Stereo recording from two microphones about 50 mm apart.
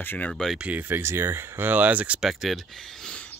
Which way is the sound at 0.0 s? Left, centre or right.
Left.